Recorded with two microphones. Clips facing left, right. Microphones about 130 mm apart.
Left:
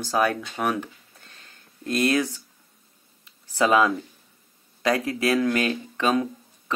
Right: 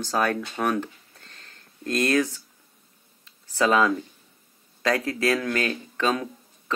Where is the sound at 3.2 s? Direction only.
15° left (ahead or behind).